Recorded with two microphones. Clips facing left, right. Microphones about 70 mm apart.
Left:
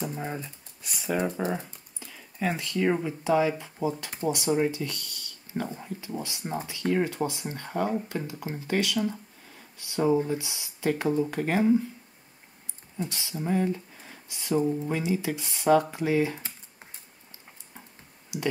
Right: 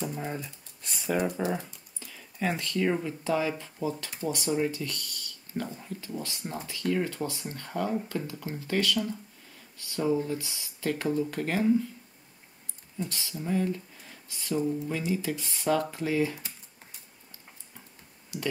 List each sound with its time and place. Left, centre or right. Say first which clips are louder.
0.0 s speech: left 1 dB; centre
2.0 s a sound: left 1 dB; centre
2.9 s speech: left 3 dB; centre
12.9 s speech: left 2 dB; centre